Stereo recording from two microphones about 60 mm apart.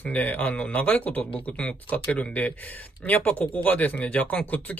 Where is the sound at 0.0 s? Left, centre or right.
Left.